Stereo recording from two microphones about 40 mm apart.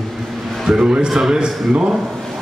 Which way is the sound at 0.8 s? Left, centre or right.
Right.